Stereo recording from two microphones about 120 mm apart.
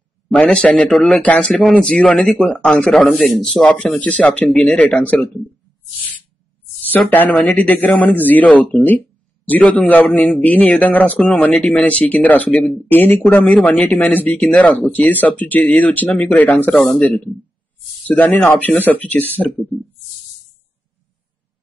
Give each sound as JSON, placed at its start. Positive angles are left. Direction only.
{"t": 0.3, "sound": "speech", "side_deg": 10}
{"t": 6.9, "sound": "speech", "side_deg": 15}